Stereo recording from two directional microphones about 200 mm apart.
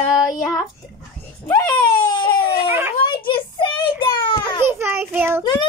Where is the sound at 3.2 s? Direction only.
25° left (ahead or behind).